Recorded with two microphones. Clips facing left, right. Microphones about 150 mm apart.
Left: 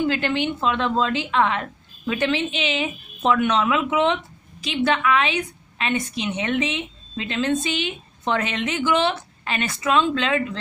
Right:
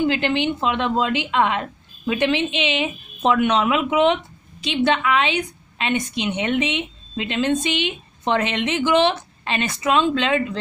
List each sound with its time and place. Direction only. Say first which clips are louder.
0.0 s a woman's voice: right 2 dB; 20° right (ahead or behind)